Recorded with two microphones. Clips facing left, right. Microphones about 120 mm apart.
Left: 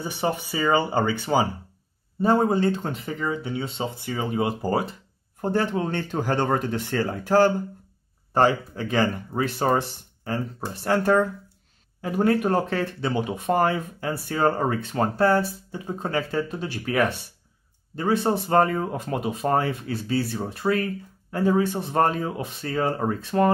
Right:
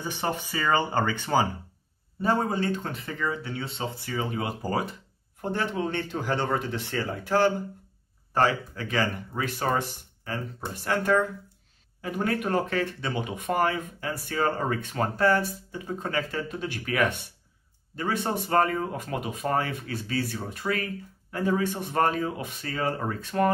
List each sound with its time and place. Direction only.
0.0 s speech: 15° left (ahead or behind)
2.2 s speech: 25° left (ahead or behind)
5.4 s speech: 40° left (ahead or behind)
8.3 s speech: 25° left (ahead or behind)
17.9 s speech: 30° left (ahead or behind)